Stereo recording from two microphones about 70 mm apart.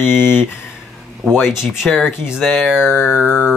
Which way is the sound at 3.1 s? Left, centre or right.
Centre.